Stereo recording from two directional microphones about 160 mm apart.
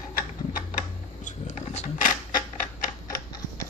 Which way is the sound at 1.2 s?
50° left (ahead or behind).